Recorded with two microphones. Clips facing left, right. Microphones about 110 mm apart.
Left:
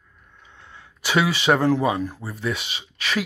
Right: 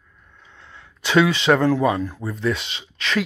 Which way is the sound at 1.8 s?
20° left (ahead or behind).